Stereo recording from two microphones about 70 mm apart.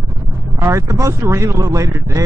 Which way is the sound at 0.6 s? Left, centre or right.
Right.